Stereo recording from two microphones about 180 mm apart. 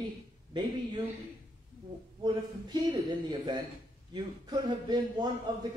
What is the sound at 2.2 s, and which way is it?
A man's voice, 20° right (ahead or behind).